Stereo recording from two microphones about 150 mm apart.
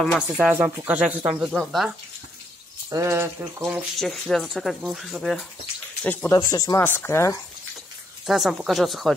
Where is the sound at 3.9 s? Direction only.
Centre (ahead or behind).